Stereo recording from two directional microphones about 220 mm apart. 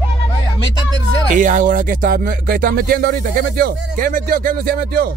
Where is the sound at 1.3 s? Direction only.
35° right (ahead or behind).